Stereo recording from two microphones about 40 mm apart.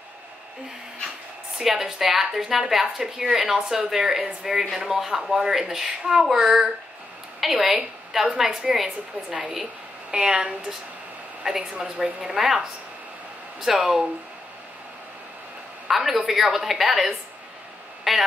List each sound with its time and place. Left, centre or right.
1.6 s a woman's voice: centre
10.1 s a woman's voice: right
15.9 s a woman's voice: centre
18.1 s a sound: centre